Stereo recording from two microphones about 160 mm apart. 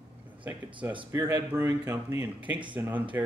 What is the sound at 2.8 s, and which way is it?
Speech, 10° right (ahead or behind).